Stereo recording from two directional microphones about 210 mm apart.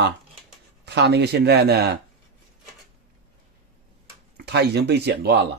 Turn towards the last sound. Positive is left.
turn(degrees=-55)  # may be behind; listen again after turning